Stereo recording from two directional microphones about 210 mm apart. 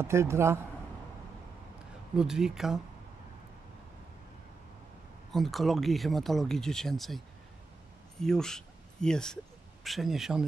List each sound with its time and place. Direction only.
0.0 s speech: 15° right (ahead or behind)
2.1 s speech: 5° right (ahead or behind)
5.3 s speech: centre (ahead or behind)